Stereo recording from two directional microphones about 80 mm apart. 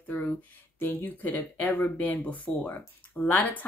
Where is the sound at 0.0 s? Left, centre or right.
Left.